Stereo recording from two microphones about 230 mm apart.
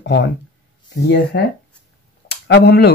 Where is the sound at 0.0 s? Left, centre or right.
Left.